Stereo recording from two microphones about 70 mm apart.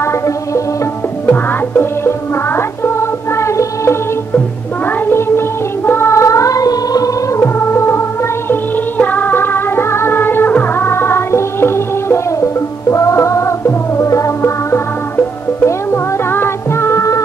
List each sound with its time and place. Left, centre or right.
1.3 s music: left
5.0 s music: left
7.3 s music: left
8.5 s music: left